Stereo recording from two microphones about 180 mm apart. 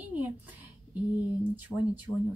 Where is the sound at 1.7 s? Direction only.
Centre (ahead or behind).